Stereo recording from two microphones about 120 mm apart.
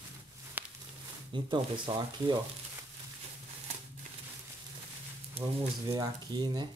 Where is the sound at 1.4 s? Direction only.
40° right (ahead or behind).